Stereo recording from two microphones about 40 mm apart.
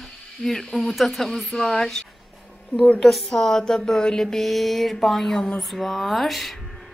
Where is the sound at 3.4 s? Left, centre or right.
Centre.